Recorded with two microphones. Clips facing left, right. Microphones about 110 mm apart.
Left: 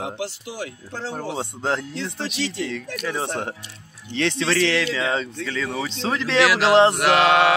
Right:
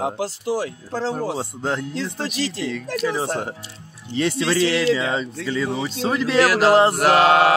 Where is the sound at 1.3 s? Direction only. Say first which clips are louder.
Even; 5° right (ahead or behind).